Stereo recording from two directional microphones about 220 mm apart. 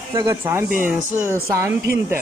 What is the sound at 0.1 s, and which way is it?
Speech, 15° right (ahead or behind).